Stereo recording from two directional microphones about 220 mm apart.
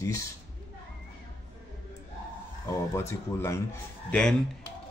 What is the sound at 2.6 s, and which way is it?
Speech, 10° left (ahead or behind).